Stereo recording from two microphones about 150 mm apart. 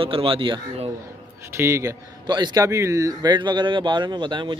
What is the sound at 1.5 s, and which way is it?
A man's voice, 20° right (ahead or behind).